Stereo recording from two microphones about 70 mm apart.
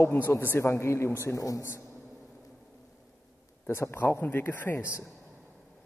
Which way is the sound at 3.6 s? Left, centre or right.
Left.